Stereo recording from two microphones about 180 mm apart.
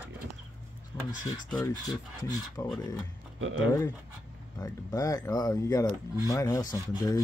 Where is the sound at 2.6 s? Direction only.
15° left (ahead or behind).